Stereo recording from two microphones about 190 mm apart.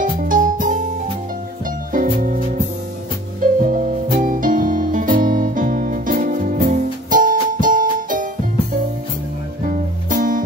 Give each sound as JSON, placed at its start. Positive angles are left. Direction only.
{"t": 0.0, "sound": "music", "side_deg": -45}
{"t": 1.9, "sound": "music", "side_deg": -45}
{"t": 3.6, "sound": "music", "side_deg": -45}
{"t": 9.7, "sound": "music", "side_deg": -45}